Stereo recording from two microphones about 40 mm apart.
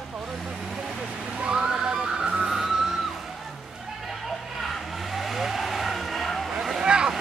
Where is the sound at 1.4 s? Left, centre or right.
Right; by 3.0 s centre.